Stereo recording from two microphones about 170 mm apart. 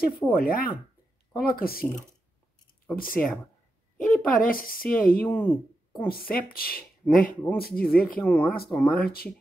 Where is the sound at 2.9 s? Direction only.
55° left (ahead or behind).